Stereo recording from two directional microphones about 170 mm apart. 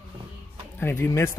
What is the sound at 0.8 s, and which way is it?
Speech, 15° left (ahead or behind).